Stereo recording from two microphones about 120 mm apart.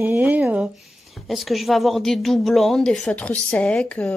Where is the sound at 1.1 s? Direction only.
Centre (ahead or behind).